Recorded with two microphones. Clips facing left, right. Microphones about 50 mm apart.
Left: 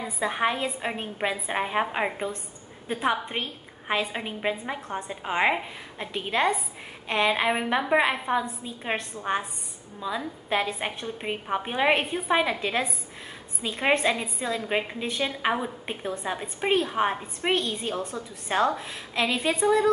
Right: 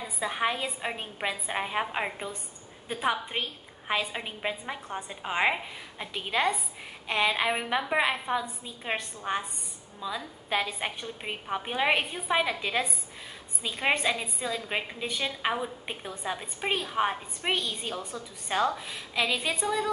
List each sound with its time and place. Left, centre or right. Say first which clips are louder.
0.2 s a woman's voice: left 3 dB; centre
13.6 s a woman's voice: left 4 dB; centre